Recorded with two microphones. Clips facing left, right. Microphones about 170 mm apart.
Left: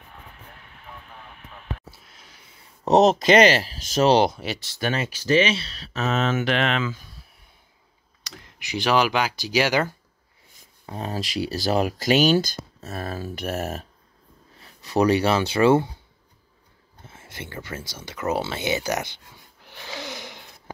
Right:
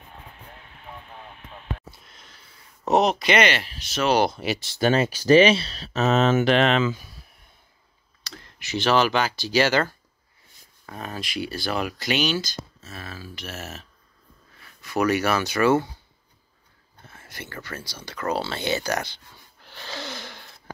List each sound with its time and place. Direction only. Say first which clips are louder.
1.9 s a sound: even; 5° left (ahead or behind)
2.8 s speech: left 4 dB; 35° left (ahead or behind)
4.4 s speech: right 4 dB; centre (ahead or behind)
4.7 s speech: right 6 dB; 35° right (ahead or behind)
8.2 s speech: even; 15° left (ahead or behind)
10.9 s speech: left 4 dB; 30° left (ahead or behind); by 13.8 s 50° left (ahead or behind)
14.6 s speech: left 3 dB; 35° left (ahead or behind)
17.0 s speech: left 2 dB; 25° left (ahead or behind)
17.9 s a sound: left 1 dB; 20° left (ahead or behind)